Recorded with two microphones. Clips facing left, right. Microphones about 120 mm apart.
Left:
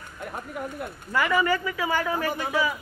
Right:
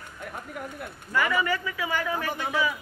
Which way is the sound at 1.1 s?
40° left (ahead or behind).